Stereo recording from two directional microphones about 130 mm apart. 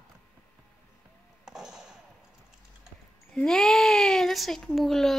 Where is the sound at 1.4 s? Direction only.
5° right (ahead or behind).